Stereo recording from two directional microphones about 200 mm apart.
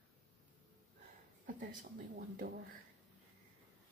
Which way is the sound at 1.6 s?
45° right (ahead or behind).